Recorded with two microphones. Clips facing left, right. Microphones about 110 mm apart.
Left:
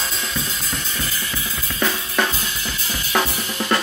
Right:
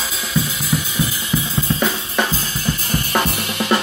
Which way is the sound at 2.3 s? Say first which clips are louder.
Right 5 dB; 35° right (ahead or behind).